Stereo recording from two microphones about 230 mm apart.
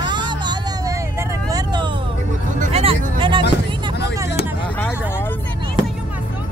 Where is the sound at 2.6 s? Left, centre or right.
Right.